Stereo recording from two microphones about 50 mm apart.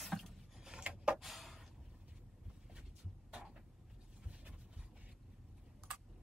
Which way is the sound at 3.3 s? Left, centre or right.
Centre.